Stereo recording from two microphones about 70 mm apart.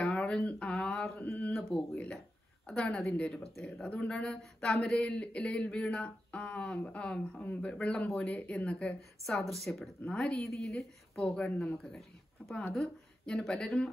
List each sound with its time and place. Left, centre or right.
0.0 s a sound: centre
1.7 s speech: centre
2.1 s a sound: centre
3.1 s speech: centre
3.5 s speech: centre
9.2 s a woman's voice: centre
10.0 s speech: centre
10.4 s a woman's voice: centre
11.2 s speech: centre
11.5 s a woman's voice: centre
12.4 s speech: centre